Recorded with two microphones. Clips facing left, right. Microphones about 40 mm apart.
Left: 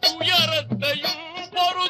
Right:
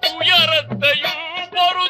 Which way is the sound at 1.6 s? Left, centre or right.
Right.